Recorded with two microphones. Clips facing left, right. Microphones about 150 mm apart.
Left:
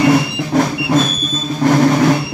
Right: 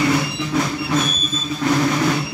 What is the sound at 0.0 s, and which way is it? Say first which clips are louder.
Music: left 6 dB; 60° left (ahead or behind).